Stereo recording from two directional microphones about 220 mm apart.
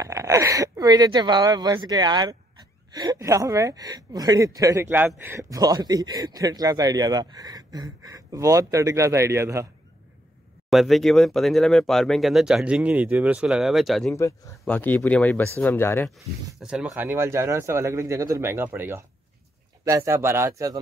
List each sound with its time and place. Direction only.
0.0 s a woman's voice: 15° right (ahead or behind)
10.7 s speech: centre (ahead or behind)
16.5 s a woman's voice: centre (ahead or behind)